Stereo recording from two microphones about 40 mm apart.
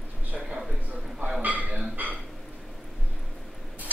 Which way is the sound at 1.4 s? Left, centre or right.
Right.